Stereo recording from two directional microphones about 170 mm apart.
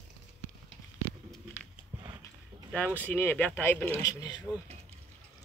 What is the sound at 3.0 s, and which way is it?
Speech, 10° left (ahead or behind).